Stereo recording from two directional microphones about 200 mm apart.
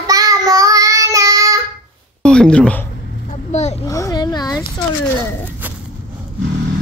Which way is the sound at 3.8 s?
15° left (ahead or behind).